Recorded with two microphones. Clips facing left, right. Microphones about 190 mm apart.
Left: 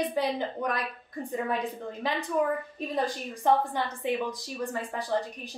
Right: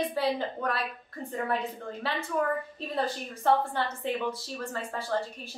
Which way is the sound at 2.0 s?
15° left (ahead or behind).